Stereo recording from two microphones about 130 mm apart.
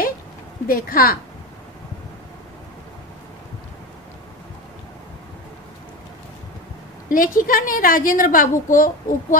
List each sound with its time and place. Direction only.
0.7 s a woman's voice: 90° left
7.1 s a woman's voice: 90° left